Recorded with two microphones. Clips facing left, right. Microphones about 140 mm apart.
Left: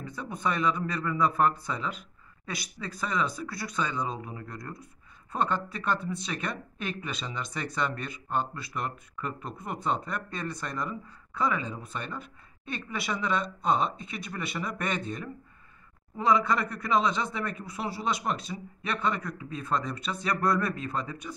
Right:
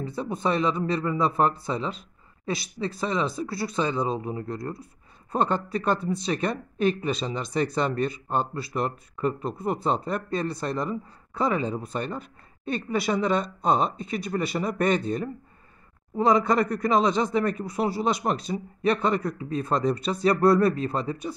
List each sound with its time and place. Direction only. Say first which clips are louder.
0.0 s speech: right 5 dB; 30° right (ahead or behind)